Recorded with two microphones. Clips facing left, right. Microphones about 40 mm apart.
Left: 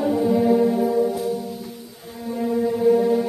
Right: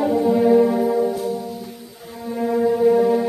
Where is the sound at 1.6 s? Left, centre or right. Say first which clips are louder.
Right 1 dB; centre.